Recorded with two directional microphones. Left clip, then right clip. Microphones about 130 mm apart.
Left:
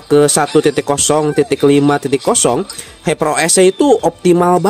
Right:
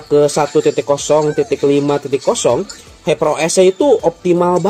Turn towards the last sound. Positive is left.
turn(degrees=55)  # may be behind; listen again after turning